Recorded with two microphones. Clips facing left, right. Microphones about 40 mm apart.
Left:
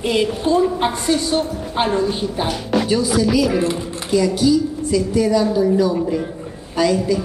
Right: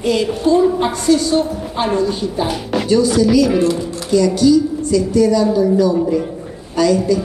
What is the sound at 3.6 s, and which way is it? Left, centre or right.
Speech, left.